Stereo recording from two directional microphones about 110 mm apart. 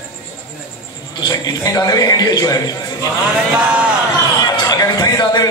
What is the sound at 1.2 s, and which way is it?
A man's voice, 35° left (ahead or behind).